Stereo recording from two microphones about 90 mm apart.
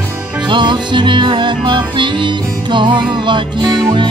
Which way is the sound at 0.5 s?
60° right (ahead or behind).